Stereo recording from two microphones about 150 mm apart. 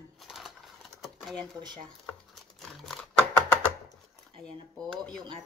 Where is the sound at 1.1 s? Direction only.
Centre (ahead or behind).